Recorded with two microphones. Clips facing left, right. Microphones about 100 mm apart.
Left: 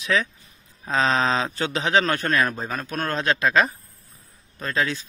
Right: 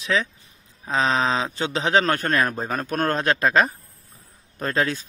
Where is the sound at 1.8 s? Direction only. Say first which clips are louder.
Right 1 dB; 40° right (ahead or behind).